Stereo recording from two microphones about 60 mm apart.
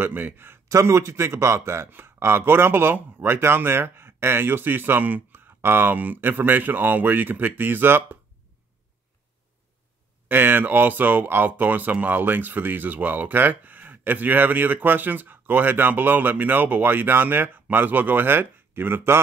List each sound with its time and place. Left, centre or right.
0.0 s speech: right
0.7 s speech: right
1.9 s speech: right
10.2 s speech: right